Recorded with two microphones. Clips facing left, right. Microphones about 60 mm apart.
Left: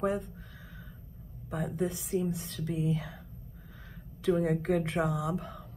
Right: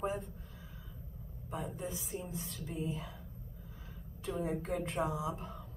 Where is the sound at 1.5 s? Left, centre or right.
Left.